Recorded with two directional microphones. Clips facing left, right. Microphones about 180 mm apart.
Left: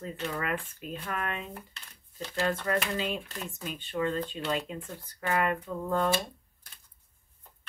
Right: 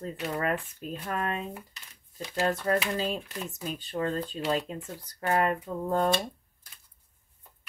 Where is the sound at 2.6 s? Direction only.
35° right (ahead or behind).